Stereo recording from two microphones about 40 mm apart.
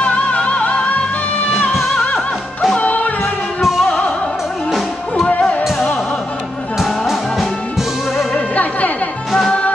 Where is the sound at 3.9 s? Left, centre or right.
Left.